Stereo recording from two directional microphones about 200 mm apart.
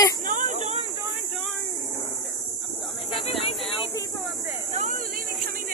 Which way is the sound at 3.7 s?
25° left (ahead or behind).